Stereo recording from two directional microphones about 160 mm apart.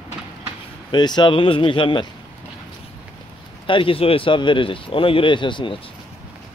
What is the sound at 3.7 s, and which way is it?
Speech, 35° left (ahead or behind).